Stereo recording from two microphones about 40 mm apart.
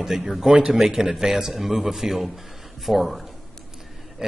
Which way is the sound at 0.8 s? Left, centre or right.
Centre.